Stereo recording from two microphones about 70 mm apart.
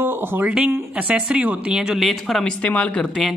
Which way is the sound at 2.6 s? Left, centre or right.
Centre.